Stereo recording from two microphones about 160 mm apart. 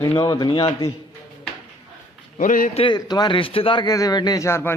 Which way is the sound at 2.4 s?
55° left (ahead or behind).